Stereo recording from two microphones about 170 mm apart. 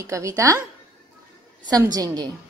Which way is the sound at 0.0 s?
20° right (ahead or behind).